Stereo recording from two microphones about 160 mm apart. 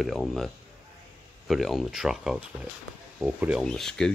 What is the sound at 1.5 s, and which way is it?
Speech, centre (ahead or behind).